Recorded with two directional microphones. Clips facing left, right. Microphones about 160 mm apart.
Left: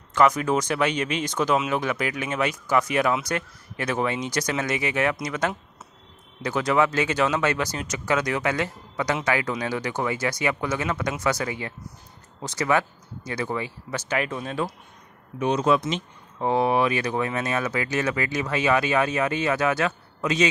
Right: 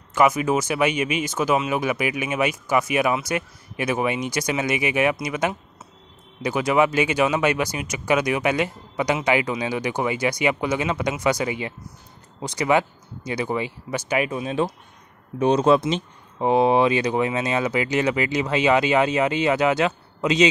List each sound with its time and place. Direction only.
0.1 s speech: 10° right (ahead or behind)
15.3 s speech: 30° right (ahead or behind)
16.3 s speech: 20° right (ahead or behind)